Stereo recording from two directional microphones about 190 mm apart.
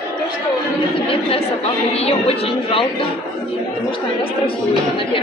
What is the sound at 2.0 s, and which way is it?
A woman's voice, 30° left (ahead or behind).